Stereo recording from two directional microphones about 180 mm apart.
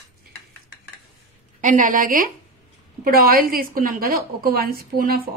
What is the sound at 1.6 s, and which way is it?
A woman's voice, 45° right (ahead or behind).